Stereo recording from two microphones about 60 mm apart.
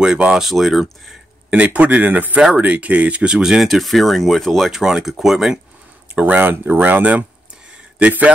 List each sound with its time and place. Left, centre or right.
0.0 s speech: centre
1.5 s speech: right
3.6 s speech: centre
6.1 s speech: right